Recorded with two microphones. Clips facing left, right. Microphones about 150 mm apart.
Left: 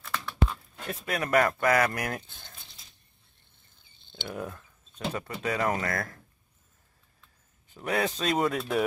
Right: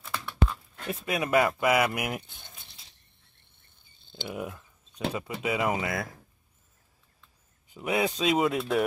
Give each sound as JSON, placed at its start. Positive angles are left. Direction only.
{"t": 0.0, "sound": "a sound", "side_deg": -10}
{"t": 0.8, "sound": "speech", "side_deg": -10}
{"t": 2.9, "sound": "cricket", "side_deg": -65}
{"t": 4.1, "sound": "speech", "side_deg": -10}
{"t": 7.7, "sound": "speech", "side_deg": -10}